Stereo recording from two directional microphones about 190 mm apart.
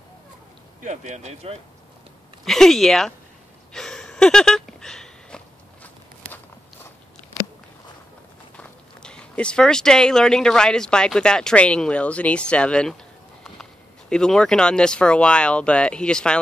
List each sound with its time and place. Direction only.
0.8 s speech: 40° right (ahead or behind)
2.4 s speech: centre (ahead or behind)
3.7 s a sound: 5° left (ahead or behind)
8.5 s speech: 5° left (ahead or behind)